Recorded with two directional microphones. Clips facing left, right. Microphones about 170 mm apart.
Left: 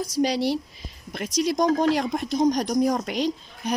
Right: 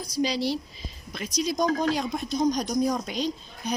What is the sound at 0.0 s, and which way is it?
Speech, 65° left (ahead or behind).